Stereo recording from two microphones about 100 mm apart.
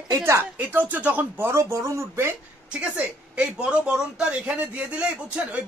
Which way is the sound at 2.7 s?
10° right (ahead or behind).